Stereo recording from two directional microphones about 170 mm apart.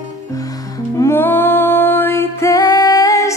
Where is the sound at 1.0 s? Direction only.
15° left (ahead or behind).